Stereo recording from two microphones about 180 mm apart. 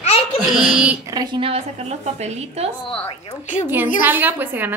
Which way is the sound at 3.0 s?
40° left (ahead or behind).